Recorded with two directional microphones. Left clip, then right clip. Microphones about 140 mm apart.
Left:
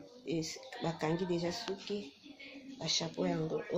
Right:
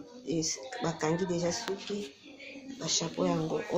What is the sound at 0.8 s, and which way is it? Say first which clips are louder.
Speech: right 4 dB; 40° left (ahead or behind).